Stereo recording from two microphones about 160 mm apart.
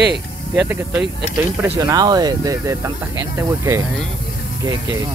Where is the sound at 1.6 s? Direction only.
20° right (ahead or behind).